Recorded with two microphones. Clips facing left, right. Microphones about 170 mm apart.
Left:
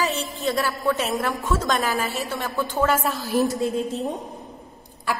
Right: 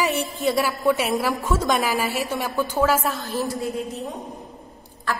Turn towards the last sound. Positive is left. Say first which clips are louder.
# even
turn(degrees=10)  # may be behind; listen again after turning